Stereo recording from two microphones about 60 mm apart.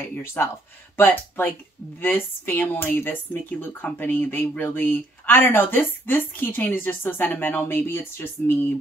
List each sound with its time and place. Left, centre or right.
0.1 s speech: left